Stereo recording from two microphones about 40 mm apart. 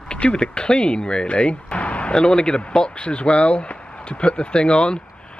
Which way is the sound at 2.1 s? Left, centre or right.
Centre.